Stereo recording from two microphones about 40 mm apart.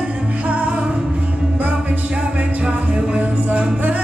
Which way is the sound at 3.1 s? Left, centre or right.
Right.